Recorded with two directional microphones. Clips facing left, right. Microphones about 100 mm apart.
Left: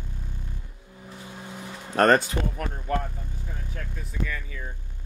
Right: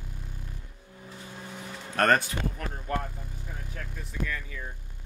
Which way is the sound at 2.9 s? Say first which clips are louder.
Left 3 dB; 5° right (ahead or behind).